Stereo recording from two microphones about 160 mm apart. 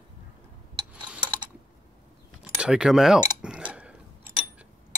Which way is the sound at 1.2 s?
30° right (ahead or behind).